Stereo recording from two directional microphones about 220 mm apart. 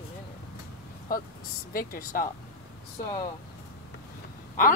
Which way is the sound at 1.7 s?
40° left (ahead or behind).